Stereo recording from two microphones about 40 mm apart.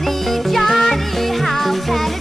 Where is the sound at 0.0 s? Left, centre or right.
Centre.